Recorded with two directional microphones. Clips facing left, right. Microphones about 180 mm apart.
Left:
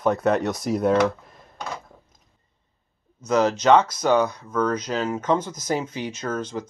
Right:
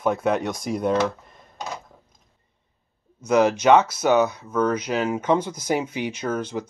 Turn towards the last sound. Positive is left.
turn(degrees=-10)  # may be behind; listen again after turning